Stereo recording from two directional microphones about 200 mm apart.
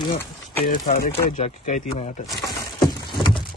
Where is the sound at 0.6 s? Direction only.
40° left (ahead or behind).